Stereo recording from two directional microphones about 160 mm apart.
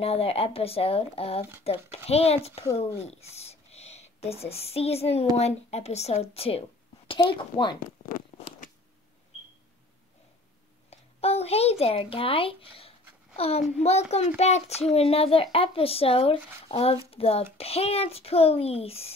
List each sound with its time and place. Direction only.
0.0 s a child's voice: 40° left (ahead or behind)
8.0 s a sound: 65° left (ahead or behind)
10.9 s a child's voice: 40° left (ahead or behind)